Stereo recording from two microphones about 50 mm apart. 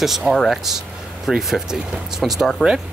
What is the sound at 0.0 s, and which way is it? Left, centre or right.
Speech, centre.